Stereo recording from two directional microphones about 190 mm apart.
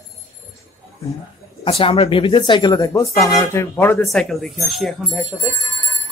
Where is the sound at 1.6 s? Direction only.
30° left (ahead or behind).